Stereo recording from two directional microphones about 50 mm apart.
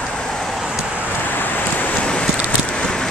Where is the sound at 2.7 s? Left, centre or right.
Centre.